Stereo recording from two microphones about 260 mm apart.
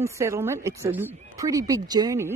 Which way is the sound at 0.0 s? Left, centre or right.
Centre.